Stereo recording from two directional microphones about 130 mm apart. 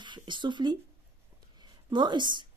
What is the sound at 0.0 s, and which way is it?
A woman's voice, 35° right (ahead or behind).